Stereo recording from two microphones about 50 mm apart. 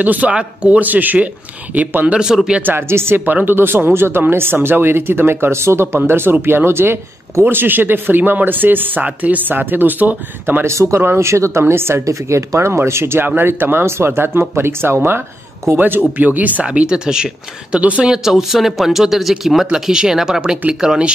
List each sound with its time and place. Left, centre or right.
0.0 s speech: right
0.3 s speech: centre
0.7 s speech: right
2.1 s speech: centre
2.9 s speech: right
3.3 s speech: right
10.6 s speech: right
11.0 s speech: right
11.6 s speech: right
12.1 s speech: right
16.0 s speech: right
16.6 s speech: centre
18.0 s speech: centre
19.7 s speech: centre